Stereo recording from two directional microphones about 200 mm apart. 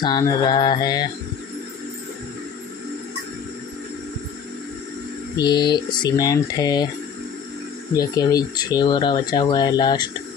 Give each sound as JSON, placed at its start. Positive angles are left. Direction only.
{"t": 0.0, "sound": "speech", "side_deg": 20}
{"t": 5.3, "sound": "speech", "side_deg": 20}
{"t": 7.9, "sound": "speech", "side_deg": 20}